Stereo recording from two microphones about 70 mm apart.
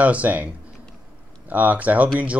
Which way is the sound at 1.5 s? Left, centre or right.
Right.